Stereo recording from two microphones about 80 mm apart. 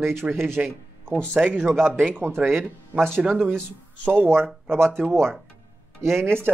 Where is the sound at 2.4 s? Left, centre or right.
Right.